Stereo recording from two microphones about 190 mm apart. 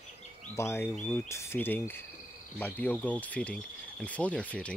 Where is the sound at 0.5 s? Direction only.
15° left (ahead or behind).